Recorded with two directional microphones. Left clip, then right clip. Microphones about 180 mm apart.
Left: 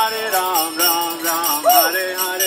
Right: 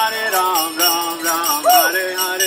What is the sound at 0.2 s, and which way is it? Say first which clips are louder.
Jingle bell: right 2 dB; 30° left (ahead or behind).